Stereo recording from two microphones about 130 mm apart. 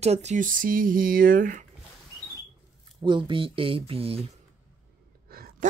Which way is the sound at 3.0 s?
40° right (ahead or behind).